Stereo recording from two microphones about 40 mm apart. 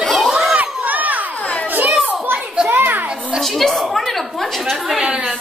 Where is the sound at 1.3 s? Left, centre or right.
Left.